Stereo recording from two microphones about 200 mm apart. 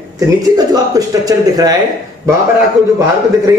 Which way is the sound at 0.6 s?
20° right (ahead or behind).